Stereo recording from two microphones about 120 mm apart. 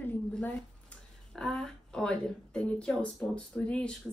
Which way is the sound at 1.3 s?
5° left (ahead or behind).